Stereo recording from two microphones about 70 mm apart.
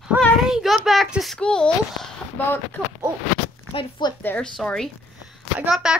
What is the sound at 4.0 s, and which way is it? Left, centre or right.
Speech, left.